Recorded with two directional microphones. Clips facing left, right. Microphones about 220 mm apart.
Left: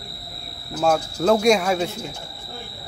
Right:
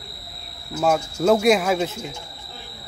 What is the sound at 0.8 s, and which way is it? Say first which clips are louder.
A man's voice: even; 5° right (ahead or behind).